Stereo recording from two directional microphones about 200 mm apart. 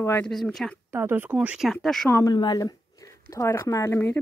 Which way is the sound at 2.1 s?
20° left (ahead or behind).